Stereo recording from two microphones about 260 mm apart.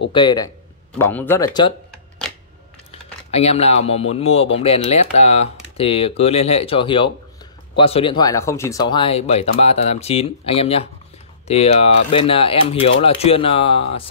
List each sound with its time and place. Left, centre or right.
0.1 s speech: centre
2.9 s speech: left